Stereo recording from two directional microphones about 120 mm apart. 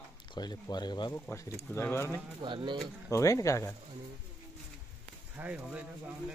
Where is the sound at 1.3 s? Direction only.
20° left (ahead or behind).